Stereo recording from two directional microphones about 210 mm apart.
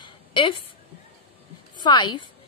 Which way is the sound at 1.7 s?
20° left (ahead or behind).